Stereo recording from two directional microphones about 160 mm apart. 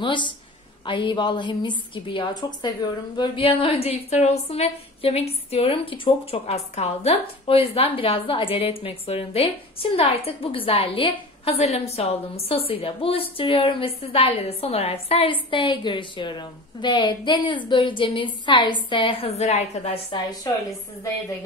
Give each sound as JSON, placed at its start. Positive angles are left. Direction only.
{"t": 0.0, "sound": "a woman's voice", "side_deg": 30}